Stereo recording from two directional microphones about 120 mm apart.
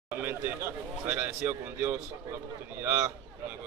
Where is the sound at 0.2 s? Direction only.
20° right (ahead or behind).